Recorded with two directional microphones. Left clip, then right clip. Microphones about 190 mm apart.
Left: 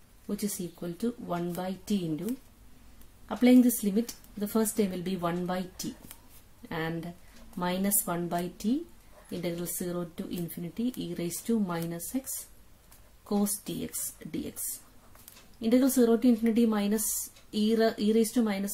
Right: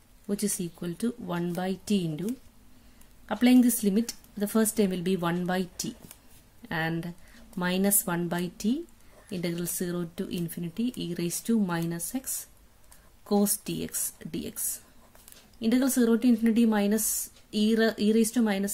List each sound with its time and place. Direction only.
0.3 s a woman's voice: 40° right (ahead or behind)
3.3 s a woman's voice: 35° right (ahead or behind)
13.3 s a woman's voice: 35° right (ahead or behind)
15.6 s a woman's voice: 35° right (ahead or behind)